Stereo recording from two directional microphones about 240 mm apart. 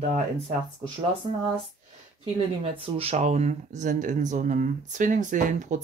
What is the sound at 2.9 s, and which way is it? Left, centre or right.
Speech, right.